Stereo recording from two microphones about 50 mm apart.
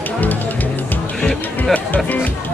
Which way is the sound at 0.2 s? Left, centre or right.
Left.